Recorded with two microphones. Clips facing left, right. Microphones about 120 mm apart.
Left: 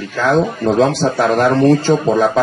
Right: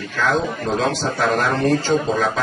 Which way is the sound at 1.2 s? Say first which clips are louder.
Left 7 dB; 40° left (ahead or behind).